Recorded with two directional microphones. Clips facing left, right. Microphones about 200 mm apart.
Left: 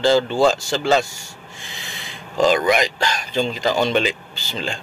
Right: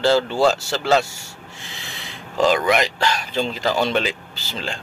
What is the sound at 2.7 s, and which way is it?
Speech, centre (ahead or behind).